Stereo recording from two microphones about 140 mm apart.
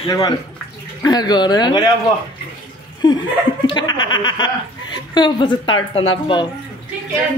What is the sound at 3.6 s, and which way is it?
Speech, 30° left (ahead or behind).